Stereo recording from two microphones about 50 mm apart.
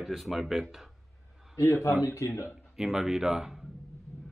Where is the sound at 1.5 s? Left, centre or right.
Left.